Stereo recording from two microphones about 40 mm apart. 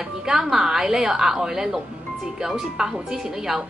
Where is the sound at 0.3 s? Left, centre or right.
Centre.